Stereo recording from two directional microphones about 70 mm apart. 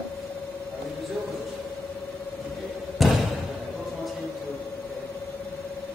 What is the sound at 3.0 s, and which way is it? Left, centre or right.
Slam, centre.